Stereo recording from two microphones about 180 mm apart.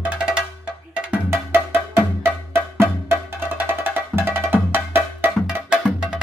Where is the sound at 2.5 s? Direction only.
15° right (ahead or behind).